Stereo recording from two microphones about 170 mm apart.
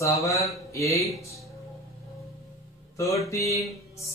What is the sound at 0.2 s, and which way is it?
Speech, 20° left (ahead or behind).